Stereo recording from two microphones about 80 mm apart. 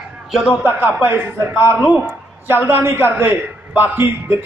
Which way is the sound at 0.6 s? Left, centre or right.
Right.